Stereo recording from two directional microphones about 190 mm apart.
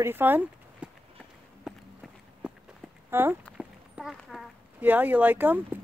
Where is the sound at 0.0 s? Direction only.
10° right (ahead or behind).